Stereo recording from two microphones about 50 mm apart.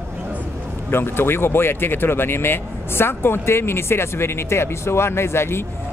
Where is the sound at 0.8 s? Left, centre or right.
Left.